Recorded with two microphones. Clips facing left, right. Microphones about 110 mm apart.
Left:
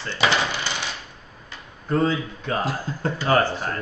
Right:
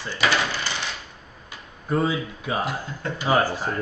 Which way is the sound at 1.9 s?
10° right (ahead or behind).